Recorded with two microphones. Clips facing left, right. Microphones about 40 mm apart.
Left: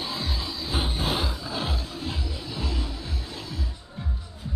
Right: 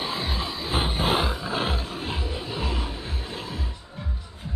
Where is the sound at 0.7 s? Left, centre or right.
Right.